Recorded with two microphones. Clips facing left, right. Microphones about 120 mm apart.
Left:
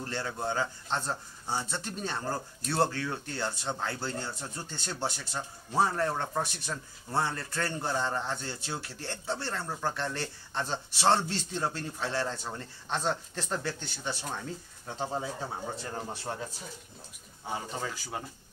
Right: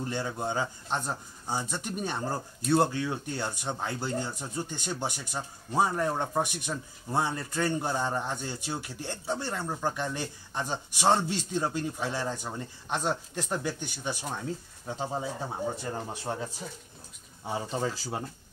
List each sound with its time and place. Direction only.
0.0 s speech: 15° right (ahead or behind)
17.6 s speech: 30° right (ahead or behind)